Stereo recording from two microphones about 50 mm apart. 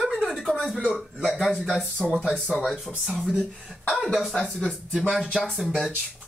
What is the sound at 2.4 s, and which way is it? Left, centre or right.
Speech, centre.